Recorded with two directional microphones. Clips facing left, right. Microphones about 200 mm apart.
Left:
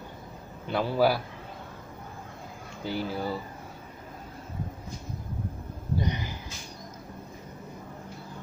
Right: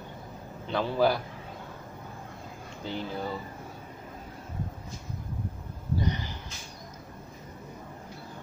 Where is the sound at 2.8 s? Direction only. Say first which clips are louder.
Left 3 dB; 10° left (ahead or behind).